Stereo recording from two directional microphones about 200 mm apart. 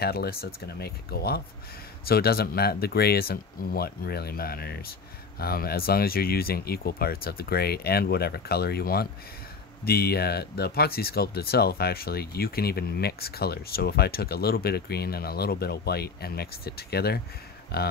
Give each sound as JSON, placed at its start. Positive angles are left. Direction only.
{"t": 0.0, "sound": "speech", "side_deg": 50}